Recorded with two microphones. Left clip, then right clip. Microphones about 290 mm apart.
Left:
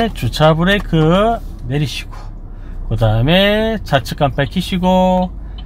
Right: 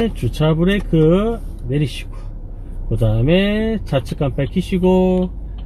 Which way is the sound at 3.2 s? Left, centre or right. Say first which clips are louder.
Left 5 dB; left.